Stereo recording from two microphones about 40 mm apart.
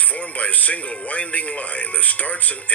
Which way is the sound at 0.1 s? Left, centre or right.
Left.